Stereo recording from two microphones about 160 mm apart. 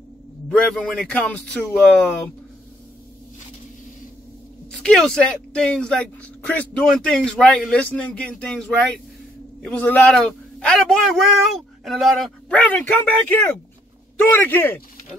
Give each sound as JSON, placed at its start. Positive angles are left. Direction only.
{"t": 0.5, "sound": "speech", "side_deg": 5}
{"t": 4.6, "sound": "speech", "side_deg": 5}